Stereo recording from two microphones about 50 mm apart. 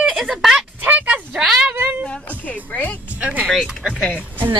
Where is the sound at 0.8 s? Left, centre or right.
Right.